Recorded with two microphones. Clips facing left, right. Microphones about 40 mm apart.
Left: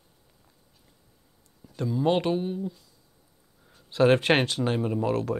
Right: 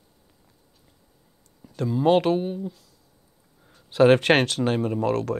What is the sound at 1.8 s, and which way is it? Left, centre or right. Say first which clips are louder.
Speech: right 5 dB; centre.